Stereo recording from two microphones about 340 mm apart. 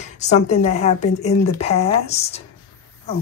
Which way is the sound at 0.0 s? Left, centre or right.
Centre.